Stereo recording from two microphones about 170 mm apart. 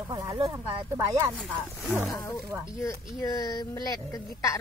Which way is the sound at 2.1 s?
15° left (ahead or behind).